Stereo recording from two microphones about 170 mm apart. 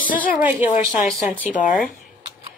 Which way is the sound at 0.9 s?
Centre (ahead or behind).